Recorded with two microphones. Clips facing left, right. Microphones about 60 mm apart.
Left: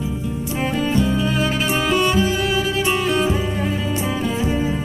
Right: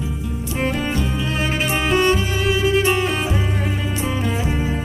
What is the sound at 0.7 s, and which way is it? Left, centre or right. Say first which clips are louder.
Music: left 4 dB; centre.